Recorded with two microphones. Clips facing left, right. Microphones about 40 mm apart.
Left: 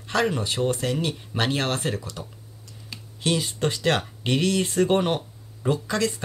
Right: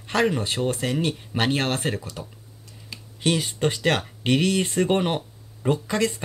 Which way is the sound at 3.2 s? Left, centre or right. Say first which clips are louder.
Right 2 dB; centre.